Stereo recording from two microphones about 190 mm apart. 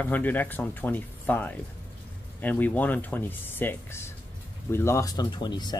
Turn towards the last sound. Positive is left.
turn(degrees=20)  # may be behind; listen again after turning